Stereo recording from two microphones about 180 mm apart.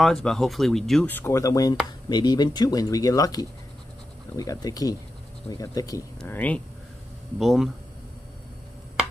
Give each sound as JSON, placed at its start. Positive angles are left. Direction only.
{"t": 0.0, "sound": "speech", "side_deg": 0}
{"t": 7.3, "sound": "speech", "side_deg": 0}